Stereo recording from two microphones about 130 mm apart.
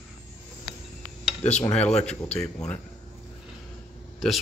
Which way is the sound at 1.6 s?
10° left (ahead or behind).